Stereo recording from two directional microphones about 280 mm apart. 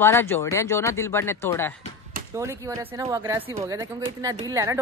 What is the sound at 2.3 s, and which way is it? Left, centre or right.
A woman's voice, centre.